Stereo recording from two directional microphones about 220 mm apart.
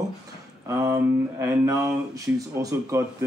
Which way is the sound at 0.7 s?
15° right (ahead or behind).